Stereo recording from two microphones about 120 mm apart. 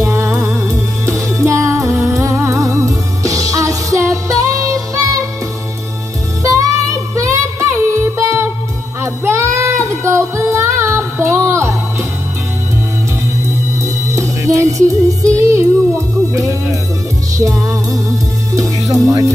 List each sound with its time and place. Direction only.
0.0 s music: 25° right (ahead or behind)
6.4 s music: 25° right (ahead or behind)
9.0 s child singing: 20° right (ahead or behind)
14.0 s music: 25° right (ahead or behind)